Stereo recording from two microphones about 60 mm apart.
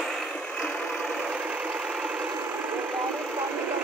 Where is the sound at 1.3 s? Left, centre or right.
Centre.